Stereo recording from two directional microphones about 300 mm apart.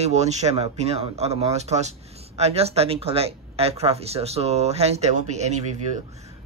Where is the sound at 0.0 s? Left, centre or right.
Right.